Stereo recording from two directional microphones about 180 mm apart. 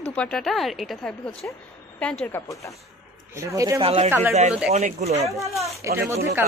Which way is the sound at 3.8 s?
30° right (ahead or behind).